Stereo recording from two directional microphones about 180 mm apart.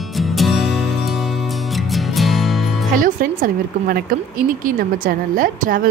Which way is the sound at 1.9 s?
Centre (ahead or behind).